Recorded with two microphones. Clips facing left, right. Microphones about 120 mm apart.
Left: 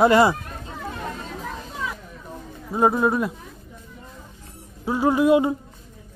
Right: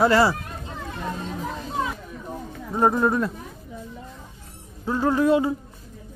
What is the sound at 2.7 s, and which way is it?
Speech, 5° left (ahead or behind).